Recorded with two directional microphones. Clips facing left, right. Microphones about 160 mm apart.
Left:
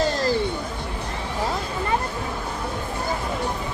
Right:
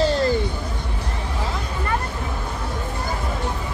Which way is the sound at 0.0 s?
40° left (ahead or behind).